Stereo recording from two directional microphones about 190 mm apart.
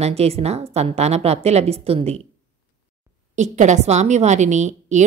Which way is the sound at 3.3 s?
40° right (ahead or behind).